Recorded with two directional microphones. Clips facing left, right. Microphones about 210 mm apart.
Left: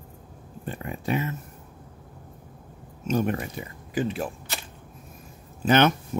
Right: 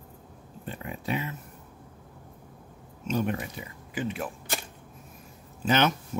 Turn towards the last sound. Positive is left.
turn(degrees=55)  # may be behind; listen again after turning